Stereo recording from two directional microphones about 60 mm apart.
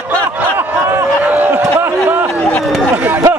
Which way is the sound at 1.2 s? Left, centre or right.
Right.